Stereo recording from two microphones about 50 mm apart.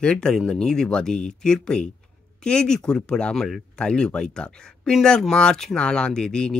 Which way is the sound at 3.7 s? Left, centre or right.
Centre.